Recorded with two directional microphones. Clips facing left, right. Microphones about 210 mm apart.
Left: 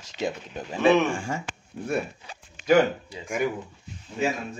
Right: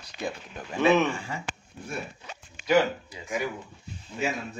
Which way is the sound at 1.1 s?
50° left (ahead or behind).